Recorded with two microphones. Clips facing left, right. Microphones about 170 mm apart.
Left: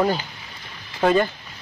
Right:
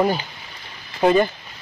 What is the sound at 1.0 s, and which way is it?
Speech, 20° right (ahead or behind).